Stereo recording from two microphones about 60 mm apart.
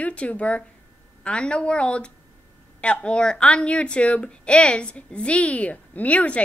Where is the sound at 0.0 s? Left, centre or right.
Left.